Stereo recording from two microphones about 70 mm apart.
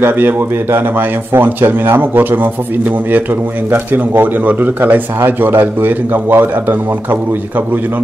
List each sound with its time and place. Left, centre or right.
0.0 s speech: right
3.7 s speech: right